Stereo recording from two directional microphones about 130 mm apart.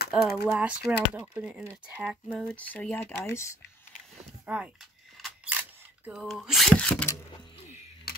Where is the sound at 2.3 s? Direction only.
10° left (ahead or behind).